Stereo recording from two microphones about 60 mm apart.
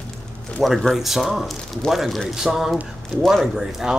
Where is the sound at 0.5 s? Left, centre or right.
Centre.